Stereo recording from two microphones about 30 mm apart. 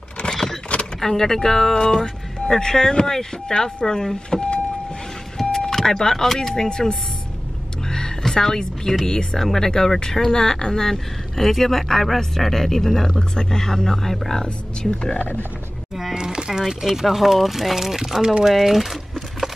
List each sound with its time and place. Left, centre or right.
0.7 s power windows: left
1.0 s speech: centre
5.4 s vehicle: centre
5.8 s speech: centre
7.9 s music: centre
9.0 s speech: left
9.4 s speech: centre
9.7 s speech: left
14.4 s speech: left
16.2 s a sound: right
16.6 s speech: centre